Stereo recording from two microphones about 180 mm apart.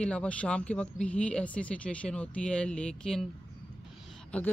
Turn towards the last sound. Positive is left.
turn(degrees=5)  # may be behind; listen again after turning